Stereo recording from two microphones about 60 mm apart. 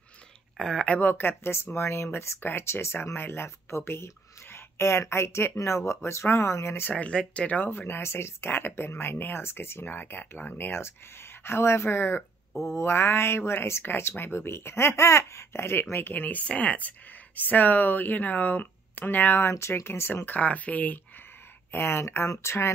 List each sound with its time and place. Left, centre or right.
0.6 s speech: centre
1.1 s speech: left
6.9 s speech: centre; by 20.2 s left
20.2 s speech: left
21.7 s speech: left